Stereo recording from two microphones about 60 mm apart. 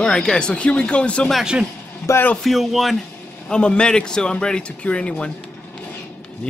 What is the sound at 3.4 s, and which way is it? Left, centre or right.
A man's voice, centre.